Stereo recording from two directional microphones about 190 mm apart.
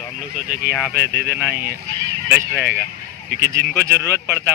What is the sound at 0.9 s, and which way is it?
Speech, 55° right (ahead or behind).